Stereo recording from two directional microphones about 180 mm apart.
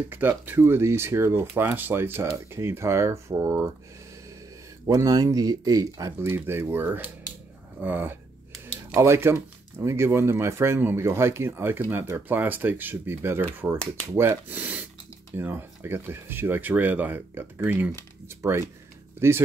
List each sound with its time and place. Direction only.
0.1 s speech: 10° right (ahead or behind)
4.8 s speech: 20° right (ahead or behind)